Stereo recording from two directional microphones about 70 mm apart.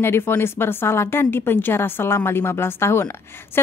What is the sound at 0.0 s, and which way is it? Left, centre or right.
A woman's voice, left.